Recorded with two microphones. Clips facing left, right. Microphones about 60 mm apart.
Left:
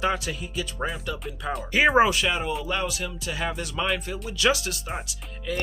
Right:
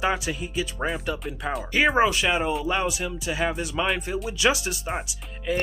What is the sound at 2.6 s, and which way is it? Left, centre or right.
Speech, centre.